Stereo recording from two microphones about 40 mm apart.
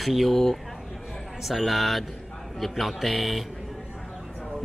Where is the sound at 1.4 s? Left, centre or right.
Centre.